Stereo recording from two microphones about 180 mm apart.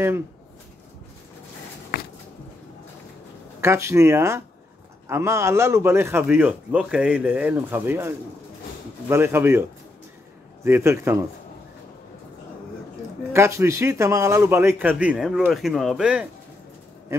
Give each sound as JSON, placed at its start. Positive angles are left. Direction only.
{"t": 3.6, "sound": "speech", "side_deg": -15}
{"t": 9.1, "sound": "speech", "side_deg": -10}
{"t": 13.3, "sound": "speech", "side_deg": -15}